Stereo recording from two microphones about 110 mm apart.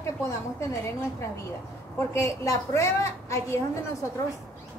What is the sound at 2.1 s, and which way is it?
A woman's voice, 30° left (ahead or behind).